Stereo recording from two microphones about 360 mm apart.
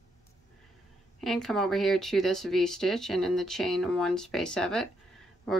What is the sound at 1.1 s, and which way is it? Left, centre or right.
Speech, centre.